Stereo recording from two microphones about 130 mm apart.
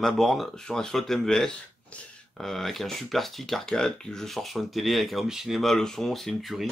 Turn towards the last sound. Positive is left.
turn(degrees=0)  # may be behind; listen again after turning